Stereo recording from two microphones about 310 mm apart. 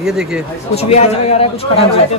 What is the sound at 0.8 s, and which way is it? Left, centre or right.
Speech, centre.